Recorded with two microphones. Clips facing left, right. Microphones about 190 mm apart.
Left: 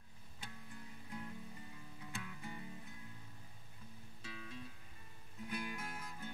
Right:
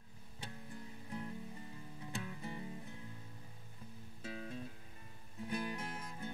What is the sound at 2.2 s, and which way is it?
Music, 30° right (ahead or behind).